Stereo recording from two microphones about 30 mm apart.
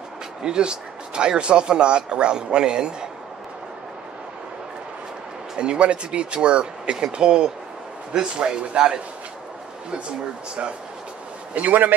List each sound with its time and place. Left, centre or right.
0.4 s speech: right
5.6 s speech: right
11.6 s a man's voice: right